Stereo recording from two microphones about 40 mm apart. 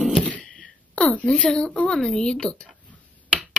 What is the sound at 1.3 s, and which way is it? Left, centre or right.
Speech, centre.